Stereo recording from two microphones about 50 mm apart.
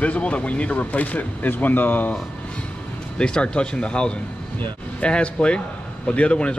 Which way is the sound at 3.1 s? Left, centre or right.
Centre.